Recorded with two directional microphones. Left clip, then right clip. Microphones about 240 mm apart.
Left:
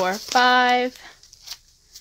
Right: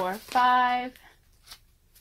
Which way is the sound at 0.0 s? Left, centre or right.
Left.